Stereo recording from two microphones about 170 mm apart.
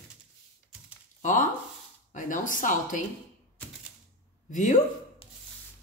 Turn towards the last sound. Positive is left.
turn(degrees=50)  # may be behind; listen again after turning